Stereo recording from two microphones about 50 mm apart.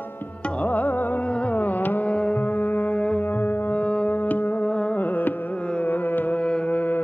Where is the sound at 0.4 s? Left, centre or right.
Left.